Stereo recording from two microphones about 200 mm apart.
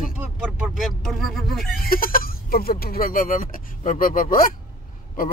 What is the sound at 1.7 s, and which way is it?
Speech, 45° left (ahead or behind).